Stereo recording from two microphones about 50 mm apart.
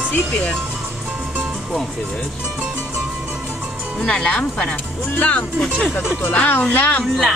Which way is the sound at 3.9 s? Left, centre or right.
Centre.